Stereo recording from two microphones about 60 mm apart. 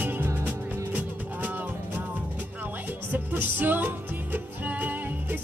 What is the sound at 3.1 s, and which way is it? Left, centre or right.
Music, right.